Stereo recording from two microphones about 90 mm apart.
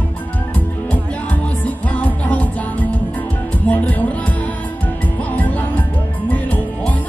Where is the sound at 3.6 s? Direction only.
15° left (ahead or behind).